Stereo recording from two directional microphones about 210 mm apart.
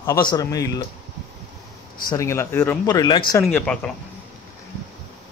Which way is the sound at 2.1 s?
15° left (ahead or behind).